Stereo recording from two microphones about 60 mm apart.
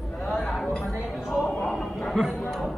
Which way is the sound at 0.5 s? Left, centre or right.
Centre.